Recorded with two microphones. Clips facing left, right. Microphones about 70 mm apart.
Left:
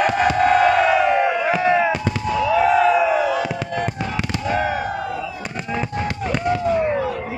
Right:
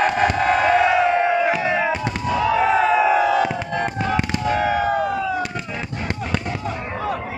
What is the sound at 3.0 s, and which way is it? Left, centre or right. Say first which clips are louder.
Fireworks: right 2 dB; right.